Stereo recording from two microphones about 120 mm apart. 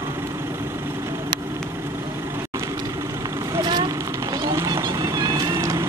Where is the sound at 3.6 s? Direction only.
40° right (ahead or behind).